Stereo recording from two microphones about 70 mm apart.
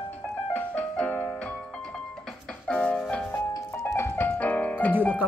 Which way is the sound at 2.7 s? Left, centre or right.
Centre.